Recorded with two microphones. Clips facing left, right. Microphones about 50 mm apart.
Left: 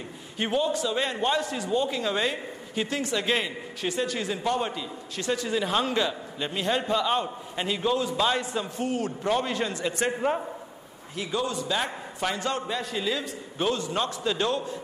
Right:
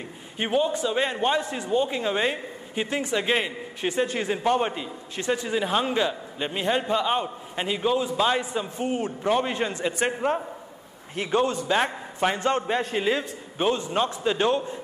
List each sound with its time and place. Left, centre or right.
0.4 s a man's voice: centre
11.1 s a man's voice: right
13.6 s a man's voice: right